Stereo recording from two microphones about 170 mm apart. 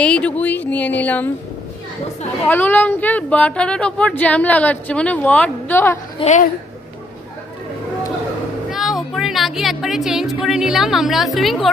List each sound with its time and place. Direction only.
0.0 s speech: 5° left (ahead or behind)
2.4 s speech: 10° left (ahead or behind)
6.1 s a child's voice: 40° left (ahead or behind)
8.6 s music: centre (ahead or behind)
10.4 s speech: centre (ahead or behind)